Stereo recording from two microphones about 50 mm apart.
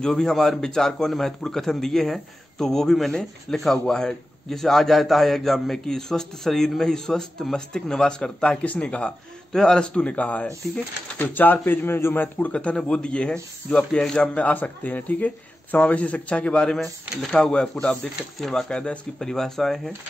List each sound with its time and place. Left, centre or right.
0.0 s a man's voice: centre
10.6 s a man's voice: centre
11.1 s speech: left
12.4 s a man's voice: left; by 19.9 s centre